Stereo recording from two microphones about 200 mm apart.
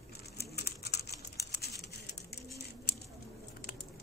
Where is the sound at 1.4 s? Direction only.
55° left (ahead or behind).